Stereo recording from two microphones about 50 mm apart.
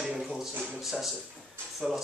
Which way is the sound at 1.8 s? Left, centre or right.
Centre.